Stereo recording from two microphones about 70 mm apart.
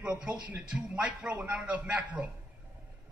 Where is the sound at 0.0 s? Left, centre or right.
Centre.